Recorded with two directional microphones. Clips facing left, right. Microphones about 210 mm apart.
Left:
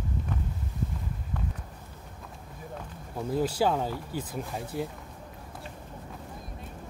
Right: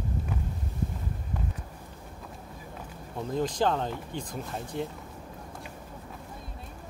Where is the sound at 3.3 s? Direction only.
10° left (ahead or behind).